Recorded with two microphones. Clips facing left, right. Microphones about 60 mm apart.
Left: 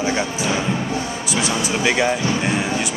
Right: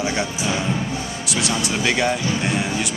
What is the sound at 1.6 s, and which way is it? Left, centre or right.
Speech, centre.